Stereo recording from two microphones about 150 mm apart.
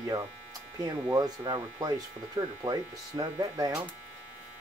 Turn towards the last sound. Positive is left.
turn(degrees=-25)  # may be behind; listen again after turning